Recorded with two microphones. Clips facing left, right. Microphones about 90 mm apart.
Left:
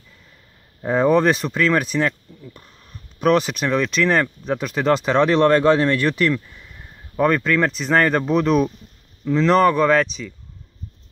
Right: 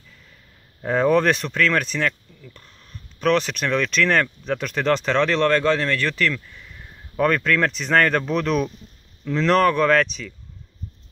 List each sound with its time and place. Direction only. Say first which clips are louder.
0.8 s speech: left 2 dB; 10° left (ahead or behind)
2.0 s speech: left 1 dB; 20° left (ahead or behind)
3.2 s speech: left 3 dB; 10° left (ahead or behind)
7.2 s speech: left 2 dB; 10° left (ahead or behind)